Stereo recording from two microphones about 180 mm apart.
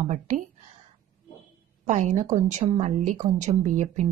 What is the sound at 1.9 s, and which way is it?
A woman's voice, 40° right (ahead or behind).